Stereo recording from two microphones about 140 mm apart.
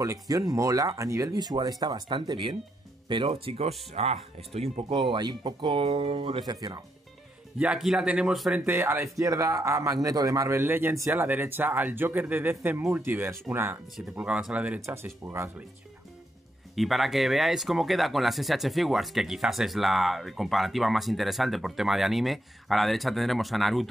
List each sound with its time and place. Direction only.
0.0 s speech: 25° right (ahead or behind)
7.5 s speech: 10° right (ahead or behind)
8.6 s speech: 15° right (ahead or behind)
16.7 s speech: centre (ahead or behind)